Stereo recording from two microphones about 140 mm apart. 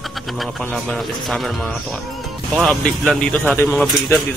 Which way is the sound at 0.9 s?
Centre (ahead or behind).